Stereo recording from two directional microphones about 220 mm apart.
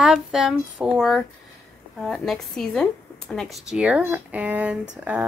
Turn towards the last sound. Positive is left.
turn(degrees=-5)  # may be behind; listen again after turning